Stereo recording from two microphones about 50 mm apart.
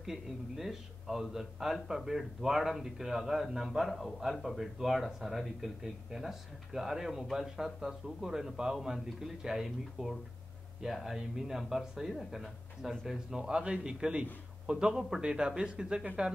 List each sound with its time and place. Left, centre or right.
0.0 s speech: centre
13.4 s speech: centre